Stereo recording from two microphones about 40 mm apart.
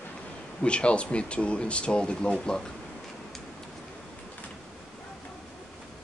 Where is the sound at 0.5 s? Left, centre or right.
Left.